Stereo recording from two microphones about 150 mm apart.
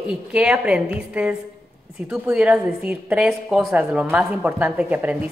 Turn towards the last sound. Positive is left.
turn(degrees=-10)  # may be behind; listen again after turning